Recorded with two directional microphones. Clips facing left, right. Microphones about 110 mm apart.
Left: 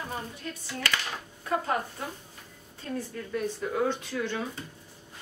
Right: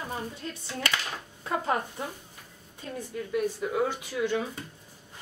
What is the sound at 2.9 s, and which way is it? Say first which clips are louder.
Speech: right 3 dB; 10° right (ahead or behind).